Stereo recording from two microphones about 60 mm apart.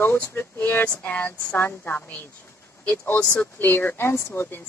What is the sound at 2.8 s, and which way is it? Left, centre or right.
Speech, left.